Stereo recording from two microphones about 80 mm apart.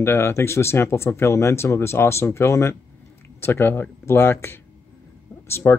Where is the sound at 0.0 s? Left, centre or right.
Left.